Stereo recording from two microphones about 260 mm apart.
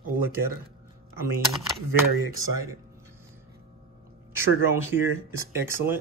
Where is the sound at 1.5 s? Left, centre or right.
Centre.